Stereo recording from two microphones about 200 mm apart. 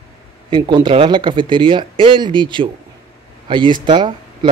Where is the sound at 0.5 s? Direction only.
25° right (ahead or behind).